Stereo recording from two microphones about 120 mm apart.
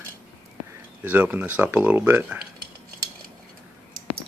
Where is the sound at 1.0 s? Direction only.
15° right (ahead or behind).